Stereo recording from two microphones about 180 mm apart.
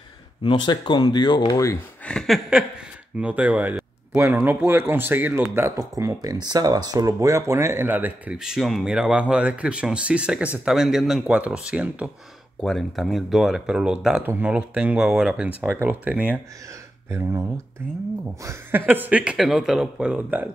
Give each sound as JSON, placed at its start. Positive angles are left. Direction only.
{"t": 0.4, "sound": "speech", "side_deg": 25}
{"t": 2.0, "sound": "a sound", "side_deg": 5}
{"t": 3.2, "sound": "a man's voice", "side_deg": -10}
{"t": 18.4, "sound": "a man's voice", "side_deg": -15}